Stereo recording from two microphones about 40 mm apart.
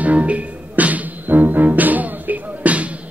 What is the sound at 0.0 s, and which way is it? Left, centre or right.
Music, right.